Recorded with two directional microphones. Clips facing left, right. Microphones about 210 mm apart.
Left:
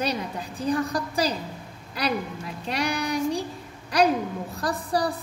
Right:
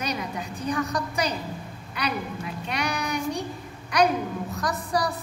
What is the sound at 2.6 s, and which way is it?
Speech, 35° left (ahead or behind).